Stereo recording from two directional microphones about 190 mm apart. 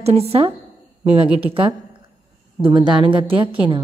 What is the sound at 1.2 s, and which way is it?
Speech, 10° right (ahead or behind).